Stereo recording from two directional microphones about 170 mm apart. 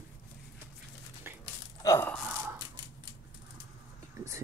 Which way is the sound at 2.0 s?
Centre (ahead or behind).